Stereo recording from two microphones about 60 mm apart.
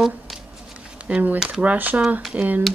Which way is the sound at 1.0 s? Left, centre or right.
Right.